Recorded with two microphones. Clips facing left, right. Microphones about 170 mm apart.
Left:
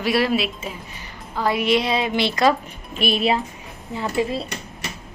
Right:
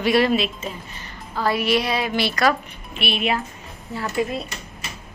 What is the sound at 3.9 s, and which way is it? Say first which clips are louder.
Speech: left 1 dB; 25° left (ahead or behind).